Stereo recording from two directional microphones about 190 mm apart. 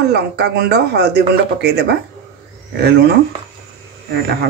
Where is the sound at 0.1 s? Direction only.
60° right (ahead or behind).